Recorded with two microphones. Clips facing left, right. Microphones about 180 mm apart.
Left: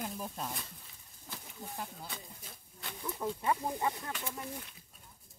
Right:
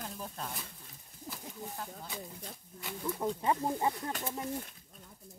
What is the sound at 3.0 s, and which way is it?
Speech, 25° right (ahead or behind).